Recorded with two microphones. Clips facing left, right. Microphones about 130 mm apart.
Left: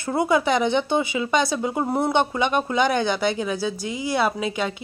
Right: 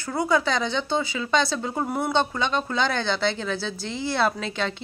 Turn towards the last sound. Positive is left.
turn(degrees=10)  # may be behind; listen again after turning